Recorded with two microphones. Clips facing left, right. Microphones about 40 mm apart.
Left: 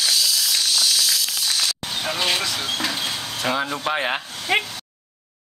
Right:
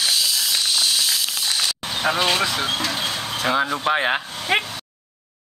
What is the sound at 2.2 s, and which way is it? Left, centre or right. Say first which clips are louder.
Speech: right 1 dB; centre.